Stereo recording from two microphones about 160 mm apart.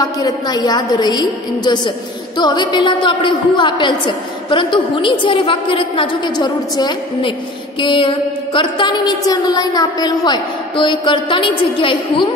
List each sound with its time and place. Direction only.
0.0 s a woman's voice: 20° left (ahead or behind)